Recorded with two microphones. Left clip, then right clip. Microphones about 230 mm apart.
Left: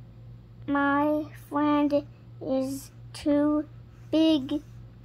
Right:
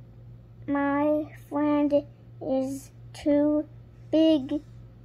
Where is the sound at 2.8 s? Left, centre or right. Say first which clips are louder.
Right 1 dB; centre.